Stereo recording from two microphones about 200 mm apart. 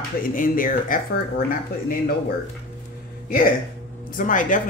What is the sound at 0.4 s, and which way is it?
Speech, 40° left (ahead or behind).